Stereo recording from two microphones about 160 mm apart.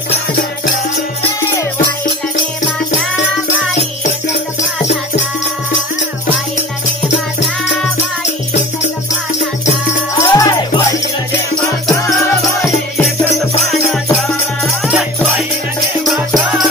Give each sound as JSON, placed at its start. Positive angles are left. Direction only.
{"t": 10.1, "sound": "music", "side_deg": 20}